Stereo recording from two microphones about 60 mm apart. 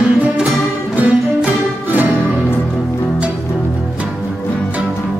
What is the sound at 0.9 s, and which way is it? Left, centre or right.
Music, right.